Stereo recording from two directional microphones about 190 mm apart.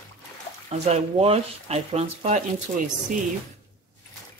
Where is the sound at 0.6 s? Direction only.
35° right (ahead or behind).